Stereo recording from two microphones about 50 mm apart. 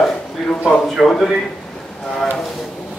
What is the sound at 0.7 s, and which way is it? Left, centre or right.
Speech, centre.